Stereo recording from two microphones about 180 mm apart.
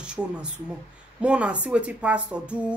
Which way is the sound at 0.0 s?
5° right (ahead or behind).